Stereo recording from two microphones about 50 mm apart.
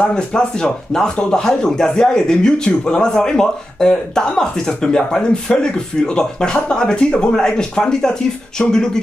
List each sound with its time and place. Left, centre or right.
0.1 s speech: centre